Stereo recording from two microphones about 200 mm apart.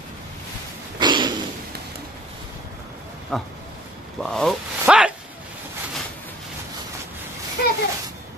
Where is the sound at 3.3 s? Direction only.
5° left (ahead or behind).